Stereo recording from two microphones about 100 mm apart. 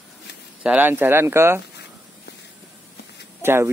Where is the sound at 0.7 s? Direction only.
20° right (ahead or behind).